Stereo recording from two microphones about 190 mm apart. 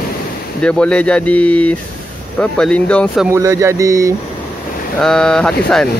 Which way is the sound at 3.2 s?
15° right (ahead or behind).